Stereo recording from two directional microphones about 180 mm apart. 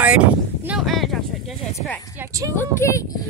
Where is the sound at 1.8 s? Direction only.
10° left (ahead or behind).